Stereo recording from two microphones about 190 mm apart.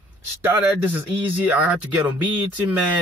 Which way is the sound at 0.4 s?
15° right (ahead or behind).